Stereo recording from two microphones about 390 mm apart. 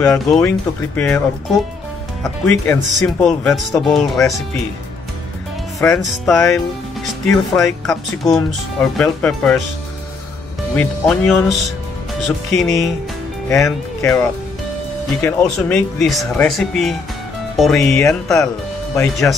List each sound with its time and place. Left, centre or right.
0.0 s speech: centre
2.2 s speech: centre
5.8 s speech: centre
10.8 s speech: centre